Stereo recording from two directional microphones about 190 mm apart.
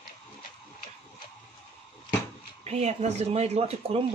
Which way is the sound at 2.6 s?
35° right (ahead or behind).